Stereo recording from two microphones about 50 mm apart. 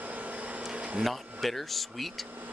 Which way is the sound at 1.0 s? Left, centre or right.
Centre.